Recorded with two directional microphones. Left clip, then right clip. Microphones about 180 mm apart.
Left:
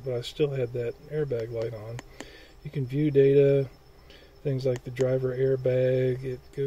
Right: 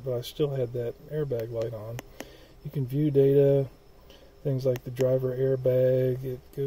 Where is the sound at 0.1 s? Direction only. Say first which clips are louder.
Left 1 dB; 5° left (ahead or behind).